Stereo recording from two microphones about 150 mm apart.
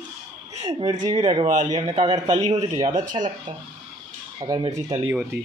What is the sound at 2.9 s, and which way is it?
Speech, 55° right (ahead or behind).